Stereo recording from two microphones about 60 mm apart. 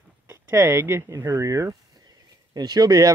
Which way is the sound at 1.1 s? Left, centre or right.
Right.